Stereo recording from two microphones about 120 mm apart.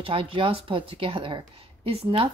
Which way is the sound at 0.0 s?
50° right (ahead or behind).